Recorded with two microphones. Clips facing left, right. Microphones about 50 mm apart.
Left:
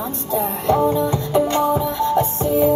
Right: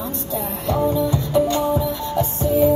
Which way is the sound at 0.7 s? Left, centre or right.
Left.